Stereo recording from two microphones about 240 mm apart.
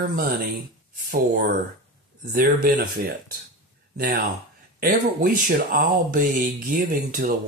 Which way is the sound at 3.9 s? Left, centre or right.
Right.